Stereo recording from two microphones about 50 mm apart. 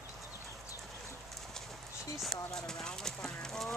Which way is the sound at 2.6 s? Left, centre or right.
Centre.